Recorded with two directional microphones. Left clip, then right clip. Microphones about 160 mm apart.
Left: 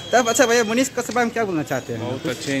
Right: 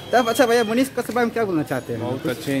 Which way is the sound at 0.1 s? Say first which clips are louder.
Left 1 dB; 15° left (ahead or behind).